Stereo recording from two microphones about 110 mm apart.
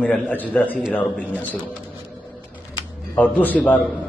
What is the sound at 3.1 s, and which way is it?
Speech, 15° left (ahead or behind).